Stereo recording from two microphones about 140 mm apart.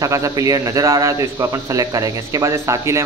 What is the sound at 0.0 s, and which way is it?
Speech, 25° right (ahead or behind).